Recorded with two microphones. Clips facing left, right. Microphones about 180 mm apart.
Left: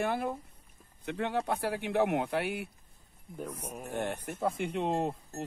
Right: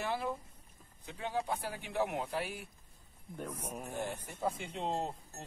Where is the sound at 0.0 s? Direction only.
55° left (ahead or behind).